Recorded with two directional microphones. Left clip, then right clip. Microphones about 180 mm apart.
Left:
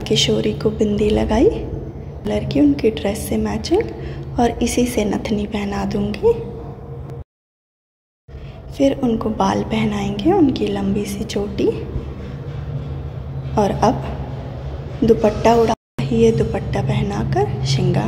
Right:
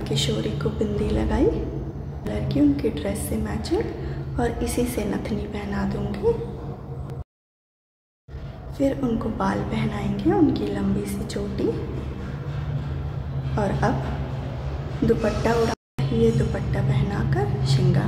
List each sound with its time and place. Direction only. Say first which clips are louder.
0.0 s a woman's voice: left 9 dB; 35° left (ahead or behind)
8.7 s a woman's voice: left 6 dB; 30° left (ahead or behind)
13.6 s a woman's voice: left 8 dB; 35° left (ahead or behind)
15.0 s a woman's voice: left 8 dB; 25° left (ahead or behind)